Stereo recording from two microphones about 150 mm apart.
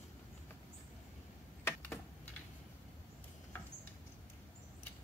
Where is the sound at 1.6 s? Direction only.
10° left (ahead or behind).